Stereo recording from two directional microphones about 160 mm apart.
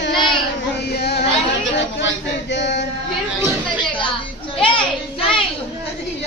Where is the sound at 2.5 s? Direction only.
90° left.